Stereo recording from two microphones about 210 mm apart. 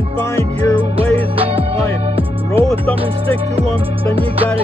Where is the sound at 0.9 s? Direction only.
25° right (ahead or behind).